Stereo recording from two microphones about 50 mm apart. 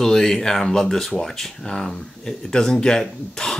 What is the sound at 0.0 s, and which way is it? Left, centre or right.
Speech, centre.